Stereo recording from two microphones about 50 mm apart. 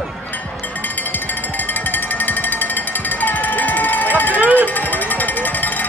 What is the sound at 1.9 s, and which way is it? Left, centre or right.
Music, left.